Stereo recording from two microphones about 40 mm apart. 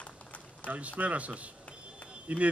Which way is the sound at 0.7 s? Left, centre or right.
Right.